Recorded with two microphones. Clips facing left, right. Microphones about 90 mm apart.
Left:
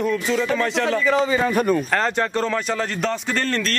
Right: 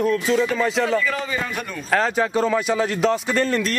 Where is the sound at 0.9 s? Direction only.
20° left (ahead or behind).